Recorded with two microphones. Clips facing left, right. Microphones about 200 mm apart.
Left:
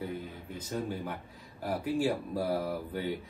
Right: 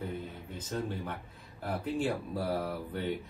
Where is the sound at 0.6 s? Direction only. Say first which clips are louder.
Left 1 dB; 10° left (ahead or behind).